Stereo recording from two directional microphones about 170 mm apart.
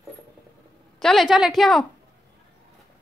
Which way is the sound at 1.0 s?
Centre (ahead or behind).